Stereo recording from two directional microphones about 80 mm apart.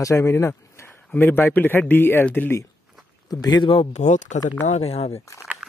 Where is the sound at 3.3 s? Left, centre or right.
Left.